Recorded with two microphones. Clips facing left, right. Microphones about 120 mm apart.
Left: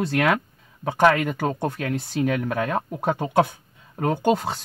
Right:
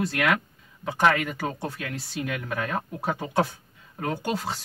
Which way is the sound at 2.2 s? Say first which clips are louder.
Left 7 dB; 35° left (ahead or behind).